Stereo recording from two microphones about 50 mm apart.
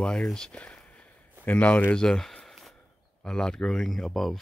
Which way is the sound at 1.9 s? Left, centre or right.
Centre.